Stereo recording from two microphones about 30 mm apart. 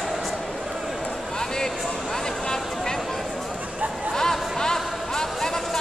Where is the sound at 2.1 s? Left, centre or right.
Left.